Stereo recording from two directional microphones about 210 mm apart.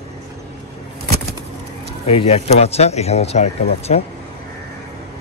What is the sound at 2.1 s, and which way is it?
Speech, 30° left (ahead or behind).